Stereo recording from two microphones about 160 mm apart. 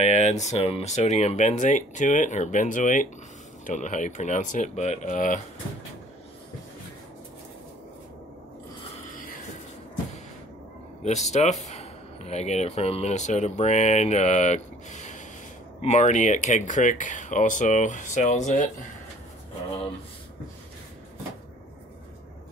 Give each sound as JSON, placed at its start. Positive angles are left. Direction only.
{"t": 0.0, "sound": "speech", "side_deg": 45}
{"t": 11.1, "sound": "speech", "side_deg": 45}